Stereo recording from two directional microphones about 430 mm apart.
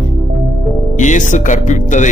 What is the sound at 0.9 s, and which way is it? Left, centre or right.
A man's voice, centre.